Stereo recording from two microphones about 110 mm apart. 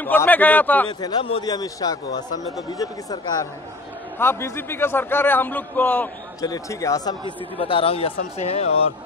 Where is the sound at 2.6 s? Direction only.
35° left (ahead or behind).